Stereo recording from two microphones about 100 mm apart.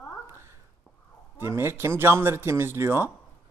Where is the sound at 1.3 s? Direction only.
25° right (ahead or behind).